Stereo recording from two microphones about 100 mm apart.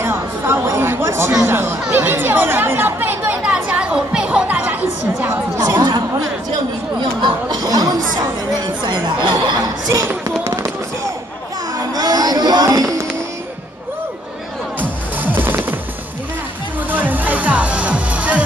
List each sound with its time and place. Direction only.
0.0 s chatter: 25° right (ahead or behind)
1.4 s speech: 25° right (ahead or behind)
5.2 s speech: 25° right (ahead or behind)
7.0 s chatter: 50° right (ahead or behind)
8.8 s speech: 50° right (ahead or behind)
10.0 s fireworks: 30° right (ahead or behind)
11.9 s a sound: 40° right (ahead or behind)
14.8 s music: 20° right (ahead or behind)
16.9 s music: 20° right (ahead or behind)